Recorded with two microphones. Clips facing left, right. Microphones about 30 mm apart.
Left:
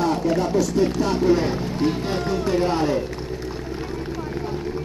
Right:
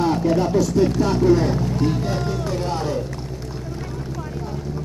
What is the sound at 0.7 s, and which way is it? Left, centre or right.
Speech, centre.